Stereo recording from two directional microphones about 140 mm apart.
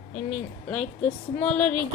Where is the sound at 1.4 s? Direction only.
5° left (ahead or behind).